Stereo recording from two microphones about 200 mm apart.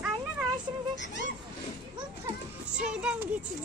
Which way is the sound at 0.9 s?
60° left (ahead or behind).